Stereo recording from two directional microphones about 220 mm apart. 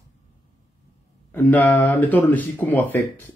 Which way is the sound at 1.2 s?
10° left (ahead or behind).